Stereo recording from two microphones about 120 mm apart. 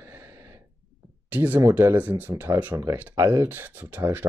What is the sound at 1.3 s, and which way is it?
Speech, 15° right (ahead or behind).